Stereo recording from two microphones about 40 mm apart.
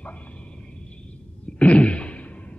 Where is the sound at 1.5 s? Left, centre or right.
Left.